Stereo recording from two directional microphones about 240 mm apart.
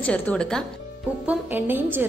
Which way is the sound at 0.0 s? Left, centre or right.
Centre.